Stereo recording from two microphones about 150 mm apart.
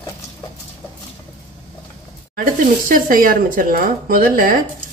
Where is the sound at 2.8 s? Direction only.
70° right (ahead or behind).